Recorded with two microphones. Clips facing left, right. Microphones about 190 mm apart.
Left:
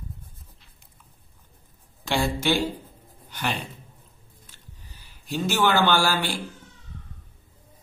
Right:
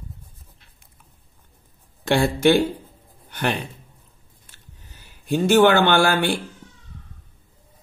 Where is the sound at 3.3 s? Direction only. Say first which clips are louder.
Right 5 dB; 60° right (ahead or behind).